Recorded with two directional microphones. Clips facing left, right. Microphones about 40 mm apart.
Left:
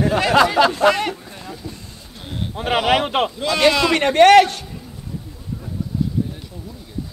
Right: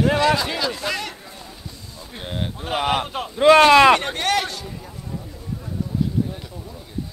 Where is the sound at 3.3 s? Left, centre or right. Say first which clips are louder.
Right 9 dB; right.